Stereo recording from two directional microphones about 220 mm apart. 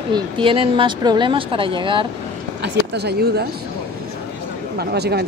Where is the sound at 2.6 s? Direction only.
50° right (ahead or behind).